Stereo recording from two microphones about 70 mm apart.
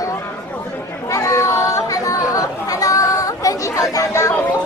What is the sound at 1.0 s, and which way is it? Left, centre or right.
Chatter, left.